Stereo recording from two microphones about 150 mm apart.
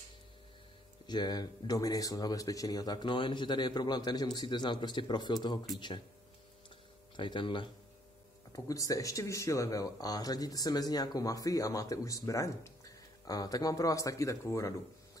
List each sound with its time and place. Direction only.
1.0 s speech: 30° left (ahead or behind)
7.2 s speech: 35° left (ahead or behind)
8.5 s speech: 20° left (ahead or behind)